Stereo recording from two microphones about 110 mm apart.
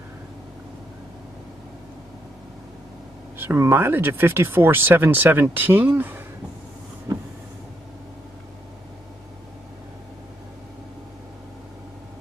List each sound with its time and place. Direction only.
3.3 s speech: 20° right (ahead or behind)
7.1 s vehicle: 40° right (ahead or behind)